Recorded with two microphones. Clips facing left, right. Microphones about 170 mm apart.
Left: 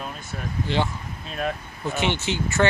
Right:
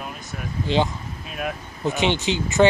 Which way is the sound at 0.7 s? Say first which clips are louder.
Right 5 dB; 15° right (ahead or behind).